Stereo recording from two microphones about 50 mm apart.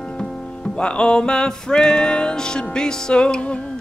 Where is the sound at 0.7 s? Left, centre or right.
Centre.